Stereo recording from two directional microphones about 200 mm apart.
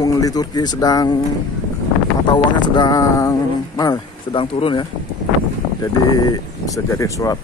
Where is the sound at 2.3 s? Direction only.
20° left (ahead or behind).